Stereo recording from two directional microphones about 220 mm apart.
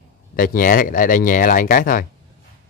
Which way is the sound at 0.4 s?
40° left (ahead or behind).